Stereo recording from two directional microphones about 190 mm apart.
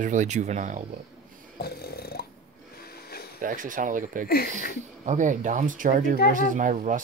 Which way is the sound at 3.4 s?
45° right (ahead or behind).